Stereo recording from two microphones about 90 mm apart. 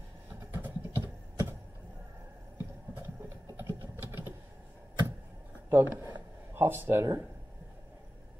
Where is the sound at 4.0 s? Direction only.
25° right (ahead or behind).